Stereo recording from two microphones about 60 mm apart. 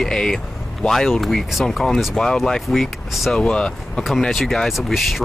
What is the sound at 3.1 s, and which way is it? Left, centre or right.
Speech, centre.